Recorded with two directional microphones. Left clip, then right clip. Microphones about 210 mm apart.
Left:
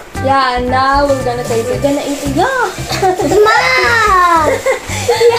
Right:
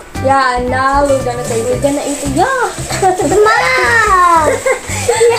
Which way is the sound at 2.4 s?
10° right (ahead or behind).